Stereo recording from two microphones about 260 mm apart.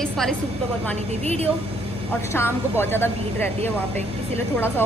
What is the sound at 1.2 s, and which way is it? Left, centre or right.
Speech, right.